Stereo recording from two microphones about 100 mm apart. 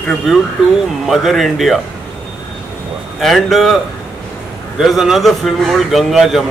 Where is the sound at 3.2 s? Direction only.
Centre (ahead or behind).